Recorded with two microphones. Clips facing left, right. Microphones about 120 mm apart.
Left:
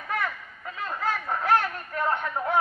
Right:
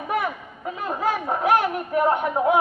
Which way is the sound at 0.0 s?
20° right (ahead or behind).